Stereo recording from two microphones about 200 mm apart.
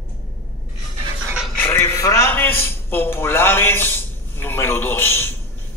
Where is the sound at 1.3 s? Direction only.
Centre (ahead or behind).